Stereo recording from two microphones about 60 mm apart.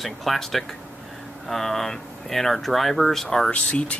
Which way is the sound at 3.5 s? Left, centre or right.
Centre.